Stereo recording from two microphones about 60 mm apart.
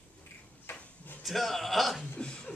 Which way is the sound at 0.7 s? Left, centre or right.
Left.